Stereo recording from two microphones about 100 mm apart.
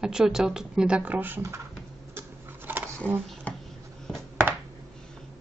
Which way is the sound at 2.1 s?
20° right (ahead or behind).